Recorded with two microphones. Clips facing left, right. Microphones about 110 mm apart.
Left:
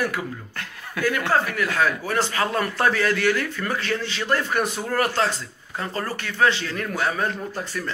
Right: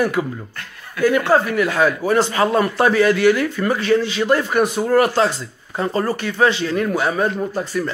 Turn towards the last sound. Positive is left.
turn(degrees=-10)  # may be behind; listen again after turning